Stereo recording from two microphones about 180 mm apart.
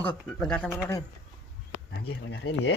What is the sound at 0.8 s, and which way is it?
Speech, 15° left (ahead or behind).